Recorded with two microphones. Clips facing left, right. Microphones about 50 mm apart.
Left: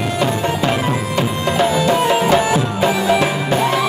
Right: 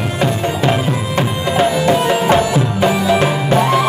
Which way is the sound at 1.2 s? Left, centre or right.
Right.